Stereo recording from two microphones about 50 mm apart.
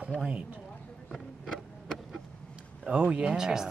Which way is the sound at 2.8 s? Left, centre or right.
Right.